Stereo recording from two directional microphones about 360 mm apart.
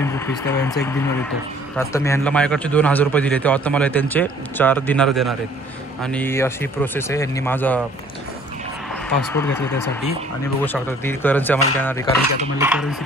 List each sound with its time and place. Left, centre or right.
0.0 s a man's voice: centre
9.1 s a man's voice: centre
12.5 s a man's voice: centre